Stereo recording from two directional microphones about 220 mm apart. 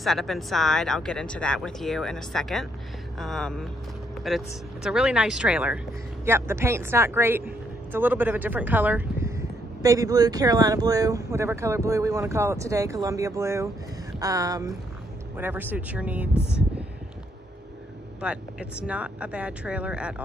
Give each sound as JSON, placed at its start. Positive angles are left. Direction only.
{"t": 0.0, "sound": "speech", "side_deg": 0}
{"t": 18.2, "sound": "speech", "side_deg": -5}